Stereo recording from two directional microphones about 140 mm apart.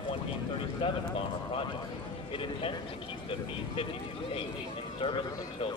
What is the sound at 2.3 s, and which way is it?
Speech, 40° left (ahead or behind).